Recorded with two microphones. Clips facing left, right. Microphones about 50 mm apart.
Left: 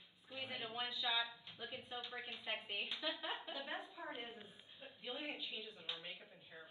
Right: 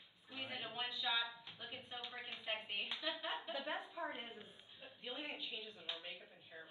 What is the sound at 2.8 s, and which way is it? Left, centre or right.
Speech, right.